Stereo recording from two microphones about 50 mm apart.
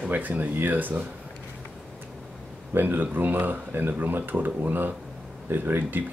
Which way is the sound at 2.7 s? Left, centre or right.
Right.